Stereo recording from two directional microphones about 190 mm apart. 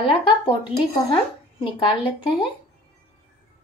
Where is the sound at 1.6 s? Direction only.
25° left (ahead or behind).